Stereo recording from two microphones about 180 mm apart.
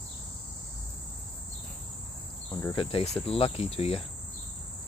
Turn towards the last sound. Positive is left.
turn(degrees=35)  # may be behind; listen again after turning